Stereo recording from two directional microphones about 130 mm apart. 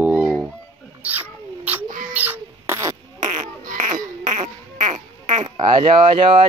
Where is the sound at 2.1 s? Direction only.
15° right (ahead or behind).